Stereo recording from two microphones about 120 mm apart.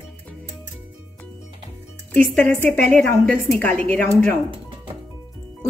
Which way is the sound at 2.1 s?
15° left (ahead or behind).